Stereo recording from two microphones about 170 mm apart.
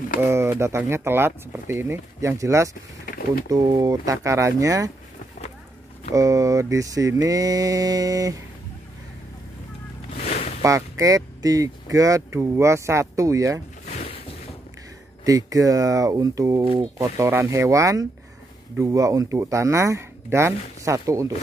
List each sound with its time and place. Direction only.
0.2 s speech: 15° right (ahead or behind)
6.1 s speech: 20° right (ahead or behind)
10.1 s a sound: 40° left (ahead or behind)
10.6 s speech: 20° right (ahead or behind)
13.9 s a sound: 35° left (ahead or behind)
15.2 s speech: 20° right (ahead or behind)